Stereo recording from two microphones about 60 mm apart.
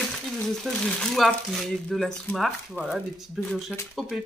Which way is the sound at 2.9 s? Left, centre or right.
Centre.